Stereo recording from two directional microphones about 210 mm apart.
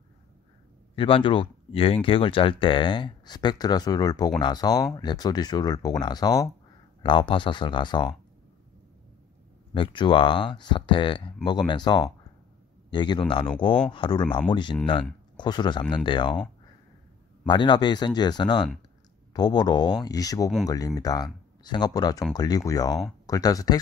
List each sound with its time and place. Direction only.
0.9 s speech: 25° left (ahead or behind)
9.8 s speech: 25° left (ahead or behind)
17.5 s speech: 20° left (ahead or behind)